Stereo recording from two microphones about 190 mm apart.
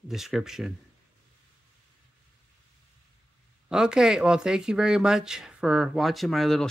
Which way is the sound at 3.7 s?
5° right (ahead or behind).